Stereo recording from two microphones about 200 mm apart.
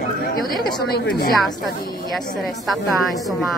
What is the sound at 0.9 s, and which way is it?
Speech, 50° left (ahead or behind).